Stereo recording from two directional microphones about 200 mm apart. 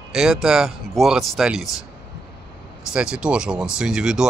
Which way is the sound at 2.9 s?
5° right (ahead or behind).